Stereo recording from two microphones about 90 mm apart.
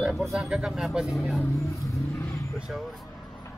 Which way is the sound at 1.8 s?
35° left (ahead or behind).